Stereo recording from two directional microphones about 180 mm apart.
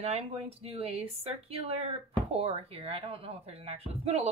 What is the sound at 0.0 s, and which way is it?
Speech, 35° right (ahead or behind).